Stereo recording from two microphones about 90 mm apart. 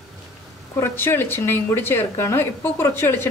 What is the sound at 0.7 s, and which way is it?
Speech, 25° left (ahead or behind).